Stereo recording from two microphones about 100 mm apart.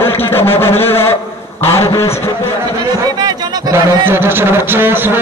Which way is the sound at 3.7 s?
25° right (ahead or behind).